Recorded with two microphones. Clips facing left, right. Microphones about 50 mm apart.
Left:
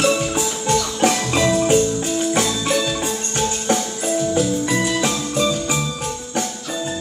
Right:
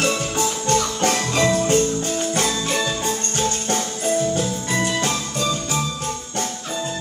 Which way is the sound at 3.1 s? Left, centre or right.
Left.